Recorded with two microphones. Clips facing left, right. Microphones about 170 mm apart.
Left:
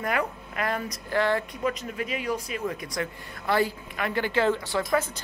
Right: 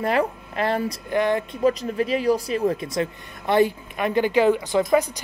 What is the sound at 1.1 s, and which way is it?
Speech, 20° right (ahead or behind).